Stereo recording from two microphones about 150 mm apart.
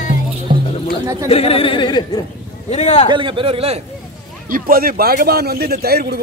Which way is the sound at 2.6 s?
50° left (ahead or behind).